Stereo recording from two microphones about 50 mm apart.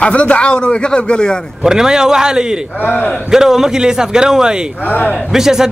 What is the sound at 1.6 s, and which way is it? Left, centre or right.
A man's voice, centre.